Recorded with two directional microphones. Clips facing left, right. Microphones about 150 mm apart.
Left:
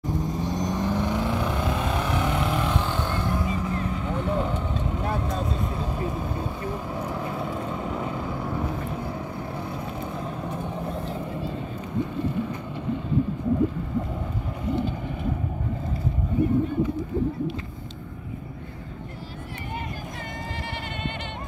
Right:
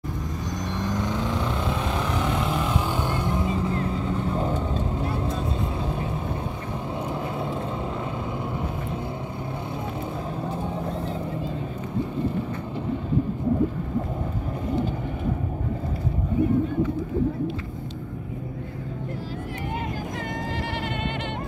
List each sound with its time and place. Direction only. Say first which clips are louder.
0.6 s vehicle: left 1 dB; 10° left (ahead or behind)
2.9 s vehicle: right 1 dB; 15° right (ahead or behind); by 4.6 s 35° right (ahead or behind)
7.1 s vehicle: right 1 dB; 25° right (ahead or behind)